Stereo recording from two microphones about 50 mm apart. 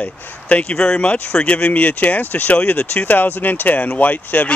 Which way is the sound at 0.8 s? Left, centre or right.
Centre.